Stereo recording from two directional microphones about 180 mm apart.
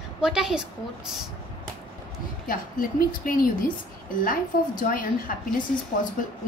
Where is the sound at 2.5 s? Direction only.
50° left (ahead or behind).